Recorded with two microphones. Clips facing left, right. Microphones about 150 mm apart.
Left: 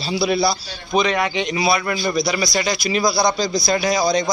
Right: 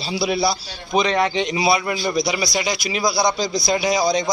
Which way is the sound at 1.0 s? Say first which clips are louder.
Right 1 dB; 30° right (ahead or behind).